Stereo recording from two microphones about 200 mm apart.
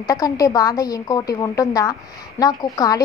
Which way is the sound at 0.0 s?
20° left (ahead or behind).